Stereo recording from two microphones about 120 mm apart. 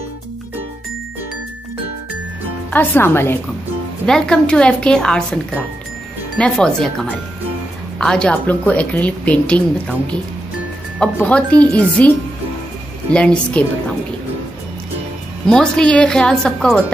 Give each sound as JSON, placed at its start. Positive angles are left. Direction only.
{"t": 2.7, "sound": "a woman's voice", "side_deg": 15}
{"t": 4.0, "sound": "a woman's voice", "side_deg": 5}
{"t": 11.2, "sound": "a woman's voice", "side_deg": 10}
{"t": 13.1, "sound": "a woman's voice", "side_deg": 10}
{"t": 15.4, "sound": "a woman's voice", "side_deg": 5}